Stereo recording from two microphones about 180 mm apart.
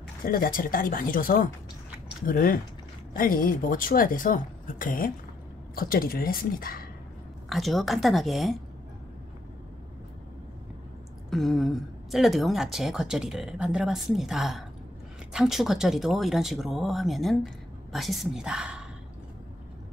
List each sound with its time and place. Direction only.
0.2 s a woman's voice: 55° left (ahead or behind)
7.4 s a woman's voice: centre (ahead or behind)
11.2 s a woman's voice: centre (ahead or behind)